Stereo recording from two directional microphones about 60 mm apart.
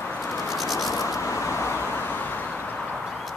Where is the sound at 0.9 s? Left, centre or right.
Left.